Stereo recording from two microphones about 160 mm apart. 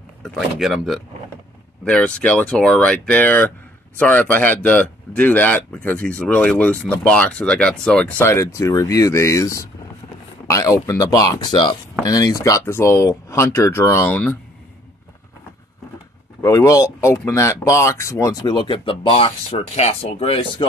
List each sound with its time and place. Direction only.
0.2 s speech: centre (ahead or behind)
16.4 s speech: 20° left (ahead or behind); by 20.6 s 35° left (ahead or behind)